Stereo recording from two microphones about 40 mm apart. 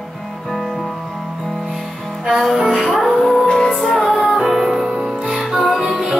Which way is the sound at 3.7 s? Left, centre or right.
Centre.